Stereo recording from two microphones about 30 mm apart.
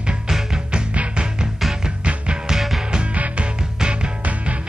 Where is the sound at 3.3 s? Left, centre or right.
Right.